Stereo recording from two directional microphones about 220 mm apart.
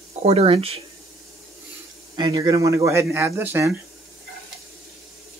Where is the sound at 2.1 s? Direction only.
20° right (ahead or behind).